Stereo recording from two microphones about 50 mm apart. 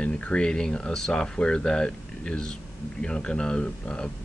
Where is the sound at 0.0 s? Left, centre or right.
Centre.